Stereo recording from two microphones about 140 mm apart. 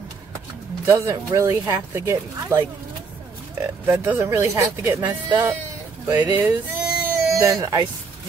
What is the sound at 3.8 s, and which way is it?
Speech, 15° right (ahead or behind).